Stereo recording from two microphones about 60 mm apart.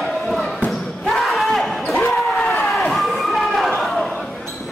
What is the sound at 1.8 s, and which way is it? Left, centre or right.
Basketball bounce, left.